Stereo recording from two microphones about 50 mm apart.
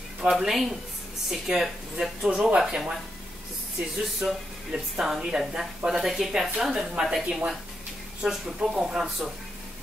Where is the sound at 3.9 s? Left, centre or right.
Centre.